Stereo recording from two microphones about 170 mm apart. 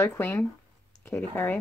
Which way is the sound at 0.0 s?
15° left (ahead or behind).